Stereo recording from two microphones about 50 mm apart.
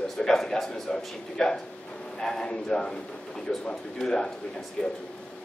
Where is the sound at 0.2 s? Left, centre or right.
Centre.